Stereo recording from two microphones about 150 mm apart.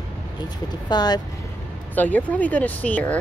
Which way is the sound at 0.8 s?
25° left (ahead or behind).